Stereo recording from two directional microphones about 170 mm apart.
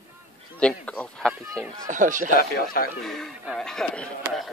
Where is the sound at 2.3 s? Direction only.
60° left (ahead or behind).